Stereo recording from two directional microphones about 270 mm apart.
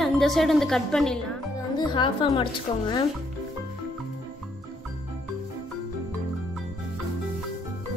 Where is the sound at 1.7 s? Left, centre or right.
Centre.